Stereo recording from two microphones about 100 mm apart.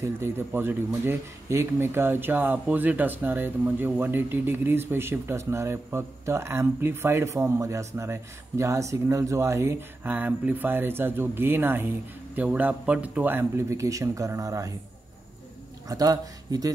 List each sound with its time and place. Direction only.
0.0 s speech: 25° right (ahead or behind)
15.9 s speech: 35° right (ahead or behind)